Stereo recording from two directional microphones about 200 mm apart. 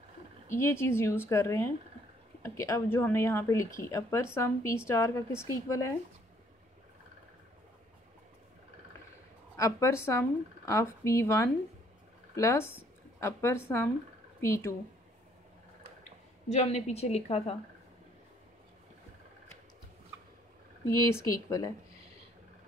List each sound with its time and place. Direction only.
0.6 s a woman's voice: 15° left (ahead or behind)
9.6 s a woman's voice: 15° left (ahead or behind)
16.4 s a woman's voice: 35° left (ahead or behind)
20.9 s a woman's voice: 15° left (ahead or behind)